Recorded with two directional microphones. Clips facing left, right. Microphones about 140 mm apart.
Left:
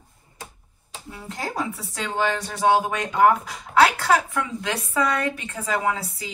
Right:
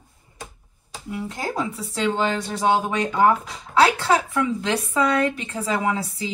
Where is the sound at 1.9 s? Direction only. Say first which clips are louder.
Right 3 dB; 30° right (ahead or behind).